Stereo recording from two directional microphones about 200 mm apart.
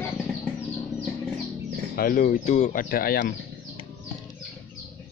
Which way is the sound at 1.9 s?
45° left (ahead or behind).